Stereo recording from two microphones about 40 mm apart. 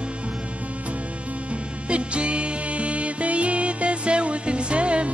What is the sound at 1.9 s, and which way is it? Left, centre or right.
Music, right.